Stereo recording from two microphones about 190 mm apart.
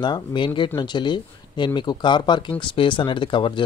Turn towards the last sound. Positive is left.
turn(degrees=25)  # may be behind; listen again after turning